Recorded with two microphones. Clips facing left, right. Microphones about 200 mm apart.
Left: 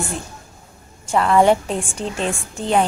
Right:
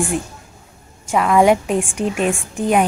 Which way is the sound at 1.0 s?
10° right (ahead or behind).